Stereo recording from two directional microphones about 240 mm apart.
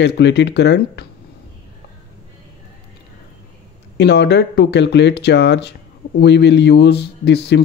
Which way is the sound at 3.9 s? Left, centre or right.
Left.